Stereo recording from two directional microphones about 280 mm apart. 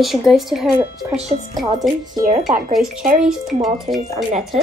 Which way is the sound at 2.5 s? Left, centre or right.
Right.